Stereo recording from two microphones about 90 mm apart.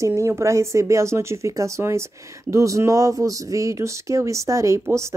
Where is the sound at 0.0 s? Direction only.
30° right (ahead or behind).